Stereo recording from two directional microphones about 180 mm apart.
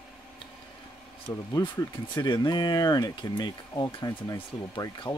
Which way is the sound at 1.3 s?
20° left (ahead or behind).